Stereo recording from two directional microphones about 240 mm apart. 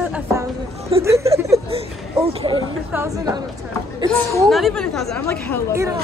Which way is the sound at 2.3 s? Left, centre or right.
Right.